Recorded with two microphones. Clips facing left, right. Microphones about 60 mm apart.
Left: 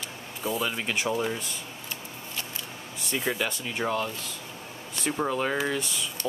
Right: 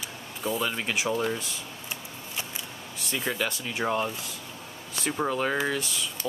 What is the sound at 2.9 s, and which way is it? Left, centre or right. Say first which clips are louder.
Speech: left 1 dB; centre.